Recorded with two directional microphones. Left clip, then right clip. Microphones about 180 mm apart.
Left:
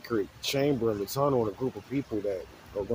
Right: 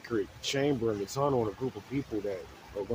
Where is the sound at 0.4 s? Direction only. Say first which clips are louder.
Left 2 dB; 10° left (ahead or behind).